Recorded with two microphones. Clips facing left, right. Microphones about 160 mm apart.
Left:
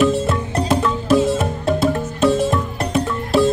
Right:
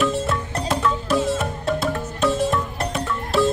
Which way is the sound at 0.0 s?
10° left (ahead or behind).